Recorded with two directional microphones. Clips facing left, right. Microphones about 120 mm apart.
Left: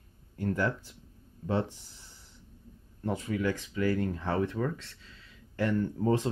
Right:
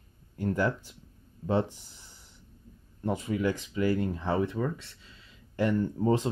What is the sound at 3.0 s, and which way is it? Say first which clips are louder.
Speech: right 2 dB; 20° right (ahead or behind).